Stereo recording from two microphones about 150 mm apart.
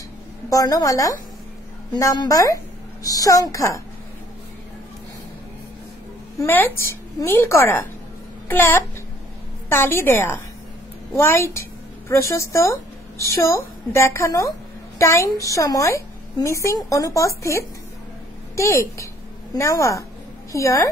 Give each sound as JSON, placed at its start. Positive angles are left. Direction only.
{"t": 0.5, "sound": "a woman's voice", "side_deg": 25}
{"t": 6.3, "sound": "a woman's voice", "side_deg": 15}